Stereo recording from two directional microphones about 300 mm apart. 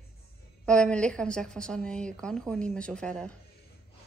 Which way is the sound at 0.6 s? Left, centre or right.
Centre.